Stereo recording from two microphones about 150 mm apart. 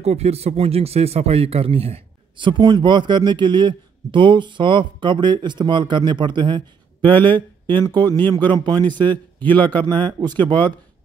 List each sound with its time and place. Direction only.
0.0 s speech: 45° right (ahead or behind)
7.2 s speech: 10° left (ahead or behind)
7.6 s speech: 30° right (ahead or behind)
9.4 s speech: 10° left (ahead or behind)
9.7 s speech: 30° right (ahead or behind)